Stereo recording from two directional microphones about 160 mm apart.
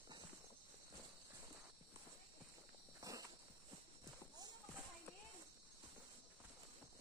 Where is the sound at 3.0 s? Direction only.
25° right (ahead or behind).